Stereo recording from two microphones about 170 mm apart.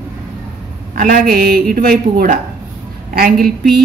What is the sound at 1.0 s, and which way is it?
A woman's voice, 60° right (ahead or behind).